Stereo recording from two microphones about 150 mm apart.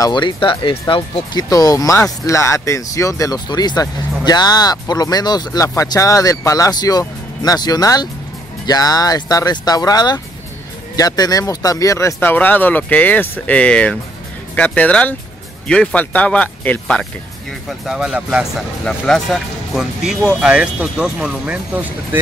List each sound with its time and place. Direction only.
0.0 s speech: 30° left (ahead or behind); by 22.2 s 10° right (ahead or behind)